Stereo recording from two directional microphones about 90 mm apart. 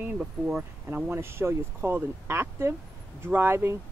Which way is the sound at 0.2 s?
5° right (ahead or behind).